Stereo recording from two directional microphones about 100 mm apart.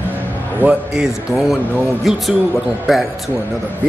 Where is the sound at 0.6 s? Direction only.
15° right (ahead or behind).